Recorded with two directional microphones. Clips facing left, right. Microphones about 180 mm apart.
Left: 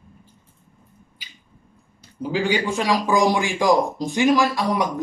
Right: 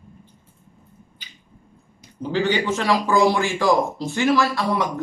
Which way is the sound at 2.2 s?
10° left (ahead or behind).